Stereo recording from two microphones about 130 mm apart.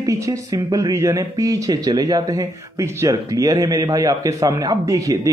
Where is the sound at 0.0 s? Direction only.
25° right (ahead or behind).